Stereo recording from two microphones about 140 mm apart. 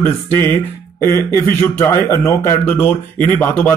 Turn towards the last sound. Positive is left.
turn(degrees=15)  # may be behind; listen again after turning